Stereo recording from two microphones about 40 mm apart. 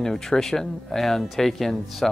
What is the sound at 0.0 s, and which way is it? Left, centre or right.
Speech, centre.